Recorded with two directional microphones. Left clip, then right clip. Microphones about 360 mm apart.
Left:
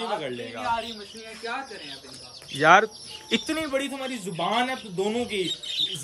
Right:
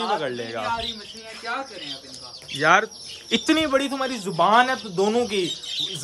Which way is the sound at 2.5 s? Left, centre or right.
Centre.